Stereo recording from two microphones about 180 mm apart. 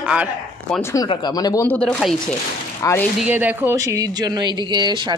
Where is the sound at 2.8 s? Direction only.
15° left (ahead or behind).